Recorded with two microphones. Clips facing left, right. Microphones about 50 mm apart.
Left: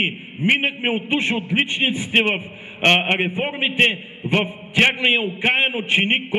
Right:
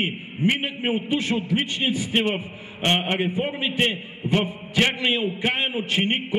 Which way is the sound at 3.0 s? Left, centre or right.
Left.